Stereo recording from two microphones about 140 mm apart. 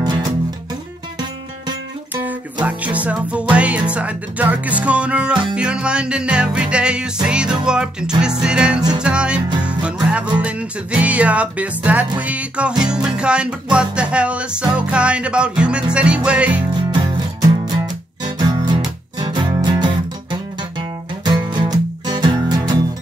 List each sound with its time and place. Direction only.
0.0 s music: 30° right (ahead or behind)
2.6 s music: 10° right (ahead or behind)
17.0 s music: 30° right (ahead or behind)